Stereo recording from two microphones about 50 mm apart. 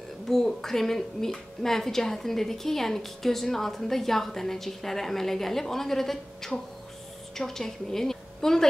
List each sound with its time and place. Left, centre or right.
0.3 s a woman's voice: centre